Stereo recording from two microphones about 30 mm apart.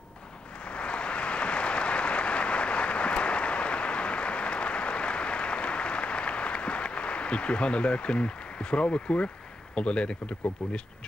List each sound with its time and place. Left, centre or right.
0.7 s applause: left
9.8 s speech: left